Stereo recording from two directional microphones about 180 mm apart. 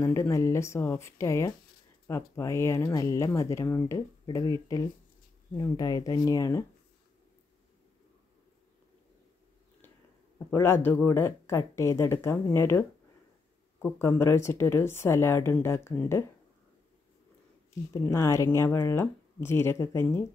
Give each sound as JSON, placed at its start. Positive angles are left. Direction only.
{"t": 0.0, "sound": "speech", "side_deg": 15}
{"t": 10.5, "sound": "speech", "side_deg": 15}
{"t": 17.9, "sound": "speech", "side_deg": 15}